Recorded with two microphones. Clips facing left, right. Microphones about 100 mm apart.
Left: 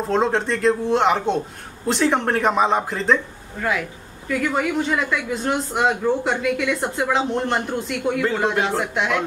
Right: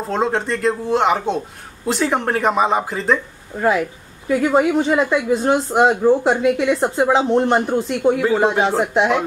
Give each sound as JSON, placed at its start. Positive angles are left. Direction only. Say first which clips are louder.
{"t": 0.1, "sound": "speech", "louder": "even", "side_deg": 0}
{"t": 3.5, "sound": "speech", "louder": "right 6 dB", "side_deg": -35}
{"t": 8.5, "sound": "speech", "louder": "right 4 dB", "side_deg": -5}